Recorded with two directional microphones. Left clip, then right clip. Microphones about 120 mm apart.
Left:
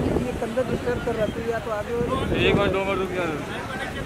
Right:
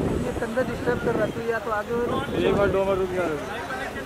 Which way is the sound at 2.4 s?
40° left (ahead or behind).